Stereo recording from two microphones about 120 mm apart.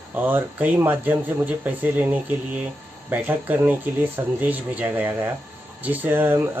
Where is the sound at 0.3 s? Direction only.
15° right (ahead or behind).